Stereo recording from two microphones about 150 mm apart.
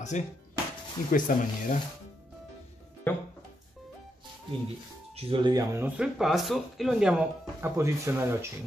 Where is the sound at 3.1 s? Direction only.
15° left (ahead or behind).